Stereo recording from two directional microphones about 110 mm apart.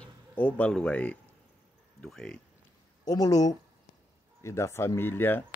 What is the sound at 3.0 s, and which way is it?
Speech, 35° left (ahead or behind).